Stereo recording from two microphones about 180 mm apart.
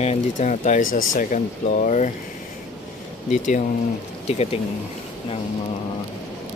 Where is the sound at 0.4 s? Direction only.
45° left (ahead or behind).